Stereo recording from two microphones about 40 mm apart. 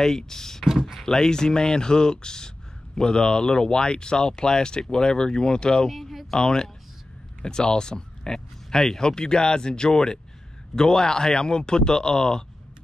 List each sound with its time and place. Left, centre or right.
0.0 s speech: centre
0.7 s speech: centre
1.0 s speech: centre
5.9 s speech: centre
6.3 s speech: centre